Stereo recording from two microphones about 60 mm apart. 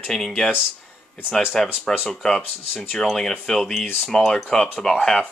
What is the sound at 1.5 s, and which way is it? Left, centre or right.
Speech, centre.